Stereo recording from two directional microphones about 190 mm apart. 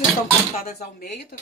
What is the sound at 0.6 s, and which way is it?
Speech, 50° left (ahead or behind).